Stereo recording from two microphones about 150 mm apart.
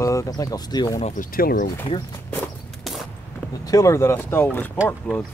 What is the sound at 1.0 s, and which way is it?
Speech, 60° left (ahead or behind).